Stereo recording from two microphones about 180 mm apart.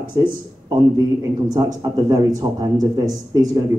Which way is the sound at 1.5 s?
20° right (ahead or behind).